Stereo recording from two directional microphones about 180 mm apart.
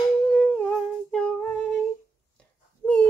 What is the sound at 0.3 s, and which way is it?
Humming, 5° left (ahead or behind).